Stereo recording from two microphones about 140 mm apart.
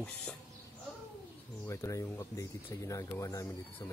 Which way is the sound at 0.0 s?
5° left (ahead or behind).